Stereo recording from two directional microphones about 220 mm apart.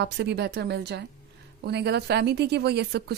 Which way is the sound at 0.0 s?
50° right (ahead or behind).